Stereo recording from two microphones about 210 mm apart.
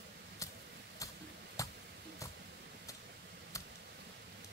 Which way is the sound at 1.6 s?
15° left (ahead or behind).